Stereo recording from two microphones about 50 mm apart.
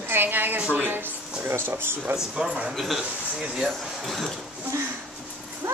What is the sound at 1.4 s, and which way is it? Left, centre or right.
Speech, right.